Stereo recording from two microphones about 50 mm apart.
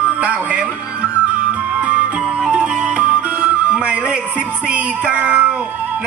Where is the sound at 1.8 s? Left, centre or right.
Right.